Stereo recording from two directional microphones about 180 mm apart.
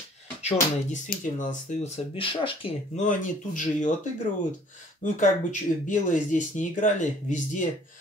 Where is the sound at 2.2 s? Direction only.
30° left (ahead or behind).